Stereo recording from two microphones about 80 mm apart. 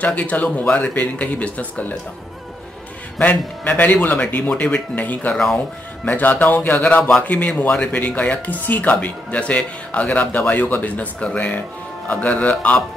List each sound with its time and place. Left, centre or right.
0.0 s speech: centre
3.2 s speech: centre
5.3 s speech: centre
6.0 s speech: left